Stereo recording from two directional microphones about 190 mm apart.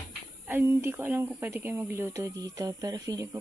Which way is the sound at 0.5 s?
10° right (ahead or behind).